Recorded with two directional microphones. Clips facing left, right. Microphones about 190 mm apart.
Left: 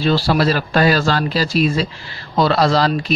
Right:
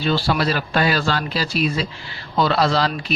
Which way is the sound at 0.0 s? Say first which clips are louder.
Left 4 dB; 40° left (ahead or behind).